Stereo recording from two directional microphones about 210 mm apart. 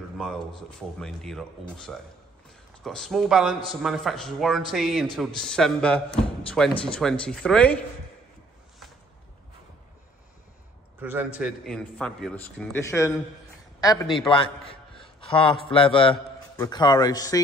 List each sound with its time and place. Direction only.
0.2 s a man's voice: centre (ahead or behind)
11.0 s a man's voice: 10° right (ahead or behind)
12.8 s a man's voice: 15° left (ahead or behind)